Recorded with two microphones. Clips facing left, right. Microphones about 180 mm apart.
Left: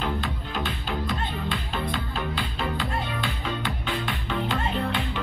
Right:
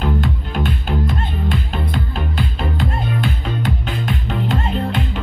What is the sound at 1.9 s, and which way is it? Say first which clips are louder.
Music: right 5 dB; 45° right (ahead or behind).